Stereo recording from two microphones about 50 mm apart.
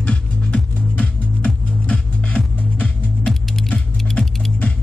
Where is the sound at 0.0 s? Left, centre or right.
Left.